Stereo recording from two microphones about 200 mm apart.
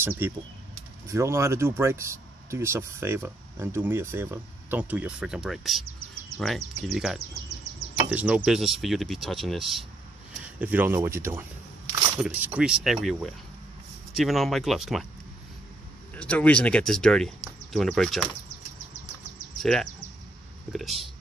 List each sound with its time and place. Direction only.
0.2 s speech: 10° right (ahead or behind)
16.2 s speech: 5° left (ahead or behind)
19.6 s speech: centre (ahead or behind)